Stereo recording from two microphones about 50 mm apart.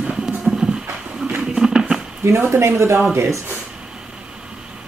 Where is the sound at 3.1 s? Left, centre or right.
Right.